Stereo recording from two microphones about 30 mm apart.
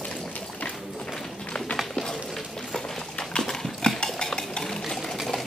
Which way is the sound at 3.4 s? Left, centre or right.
Centre.